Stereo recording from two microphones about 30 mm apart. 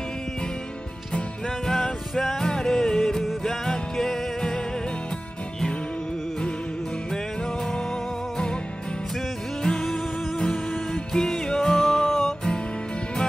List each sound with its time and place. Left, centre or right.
1.7 s music: centre
9.6 s music: left
11.1 s music: left